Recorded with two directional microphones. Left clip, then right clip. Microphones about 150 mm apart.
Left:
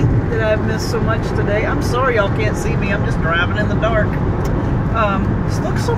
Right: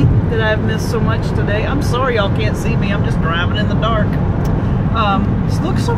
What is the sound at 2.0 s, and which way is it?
Speech, 20° right (ahead or behind).